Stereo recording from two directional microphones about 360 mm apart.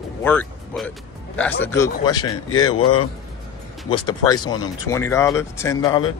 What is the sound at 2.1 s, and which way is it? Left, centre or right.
Speech, left.